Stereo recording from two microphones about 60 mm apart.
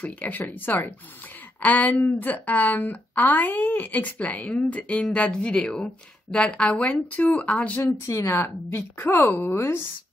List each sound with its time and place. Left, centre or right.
0.0 s speech: left
8.1 s a woman's voice: left
8.4 s speech: left